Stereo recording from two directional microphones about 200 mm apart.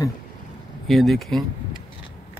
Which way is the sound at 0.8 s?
Centre (ahead or behind).